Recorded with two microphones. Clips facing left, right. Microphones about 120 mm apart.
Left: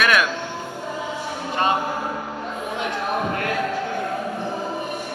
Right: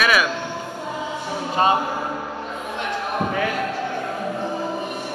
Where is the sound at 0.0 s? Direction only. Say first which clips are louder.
Even; 5° right (ahead or behind).